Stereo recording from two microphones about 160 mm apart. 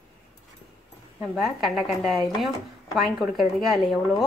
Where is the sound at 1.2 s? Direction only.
Centre (ahead or behind).